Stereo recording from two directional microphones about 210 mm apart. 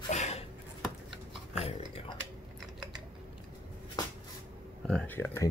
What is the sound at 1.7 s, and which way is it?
Speech, 25° left (ahead or behind).